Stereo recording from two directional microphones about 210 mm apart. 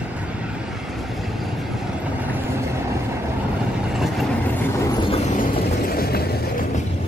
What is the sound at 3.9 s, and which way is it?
Vehicle, centre (ahead or behind).